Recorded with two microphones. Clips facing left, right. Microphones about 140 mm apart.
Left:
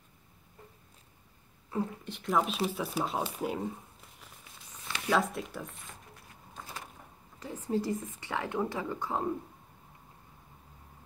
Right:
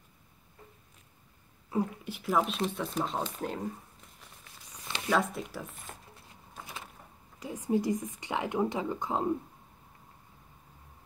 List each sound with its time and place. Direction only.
1.7 s speech: 10° right (ahead or behind)
5.1 s speech: centre (ahead or behind)
7.3 s a woman's voice: 15° right (ahead or behind)